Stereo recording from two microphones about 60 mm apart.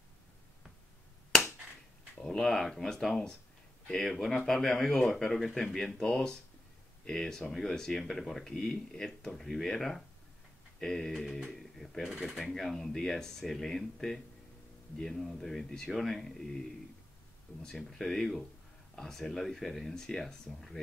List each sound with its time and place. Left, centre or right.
2.2 s speech: centre
17.5 s speech: left
17.8 s speech: centre